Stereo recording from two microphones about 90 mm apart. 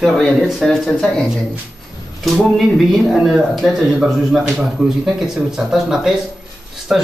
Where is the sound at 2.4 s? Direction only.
Centre (ahead or behind).